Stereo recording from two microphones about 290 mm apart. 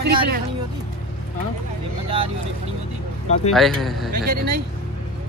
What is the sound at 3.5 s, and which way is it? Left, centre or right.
Speech, centre.